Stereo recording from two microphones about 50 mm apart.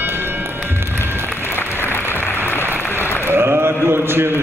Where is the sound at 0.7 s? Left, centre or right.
Right.